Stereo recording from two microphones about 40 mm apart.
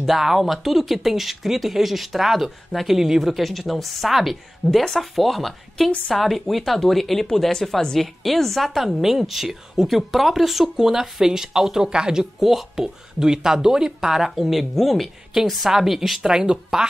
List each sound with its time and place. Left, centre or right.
0.0 s speech: centre
4.6 s speech: centre
14.4 s speech: centre
16.2 s speech: centre